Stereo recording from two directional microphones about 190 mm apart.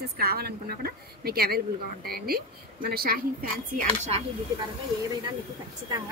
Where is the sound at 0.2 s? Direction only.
55° right (ahead or behind).